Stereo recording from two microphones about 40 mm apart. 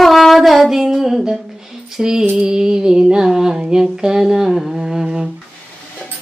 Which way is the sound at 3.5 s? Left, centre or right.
Right.